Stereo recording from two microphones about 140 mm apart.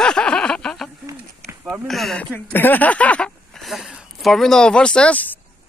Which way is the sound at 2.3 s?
15° left (ahead or behind).